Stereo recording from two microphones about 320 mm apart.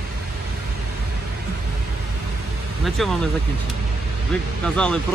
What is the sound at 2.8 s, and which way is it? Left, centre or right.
Speech, centre.